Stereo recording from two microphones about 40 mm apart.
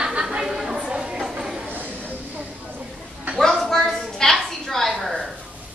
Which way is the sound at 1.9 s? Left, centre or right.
Left.